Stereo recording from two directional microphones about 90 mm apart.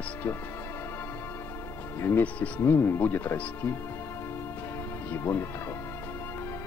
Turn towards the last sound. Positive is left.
turn(degrees=25)  # may be behind; listen again after turning